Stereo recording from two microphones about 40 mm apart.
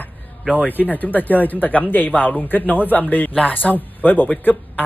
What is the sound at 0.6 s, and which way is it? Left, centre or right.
Speech, left.